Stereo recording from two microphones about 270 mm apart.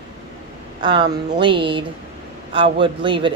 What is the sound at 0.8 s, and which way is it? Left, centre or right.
A woman's voice, centre.